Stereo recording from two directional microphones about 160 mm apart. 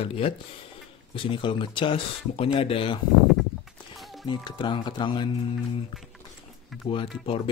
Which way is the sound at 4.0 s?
Centre (ahead or behind).